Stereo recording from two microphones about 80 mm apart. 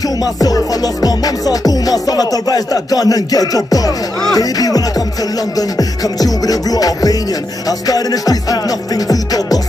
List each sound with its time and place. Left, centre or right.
0.2 s music: left